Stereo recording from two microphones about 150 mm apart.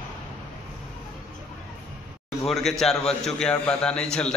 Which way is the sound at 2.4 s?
Centre (ahead or behind).